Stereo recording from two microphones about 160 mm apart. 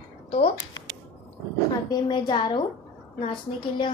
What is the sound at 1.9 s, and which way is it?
Speech, 30° left (ahead or behind).